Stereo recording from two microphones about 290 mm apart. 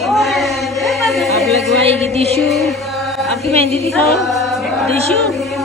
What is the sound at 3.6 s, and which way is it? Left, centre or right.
Female singing, right.